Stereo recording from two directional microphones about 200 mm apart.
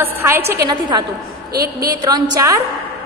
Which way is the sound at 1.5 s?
50° right (ahead or behind).